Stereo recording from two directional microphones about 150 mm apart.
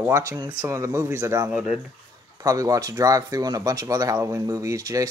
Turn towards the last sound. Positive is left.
turn(degrees=-20)  # may be behind; listen again after turning